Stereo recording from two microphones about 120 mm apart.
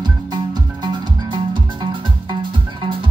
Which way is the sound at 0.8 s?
40° right (ahead or behind).